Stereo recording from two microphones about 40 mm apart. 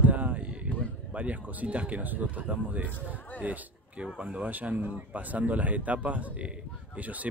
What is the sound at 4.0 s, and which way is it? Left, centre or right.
Speech, right.